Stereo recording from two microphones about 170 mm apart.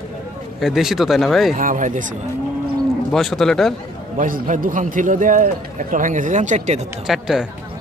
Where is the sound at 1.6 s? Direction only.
50° right (ahead or behind).